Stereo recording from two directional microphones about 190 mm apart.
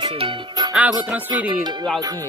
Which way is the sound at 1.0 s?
5° right (ahead or behind).